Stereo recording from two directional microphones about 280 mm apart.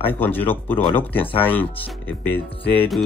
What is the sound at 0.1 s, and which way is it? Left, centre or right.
Speech, centre.